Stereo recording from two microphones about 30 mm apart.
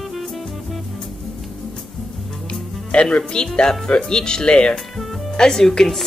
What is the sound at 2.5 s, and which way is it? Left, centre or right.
Music, left.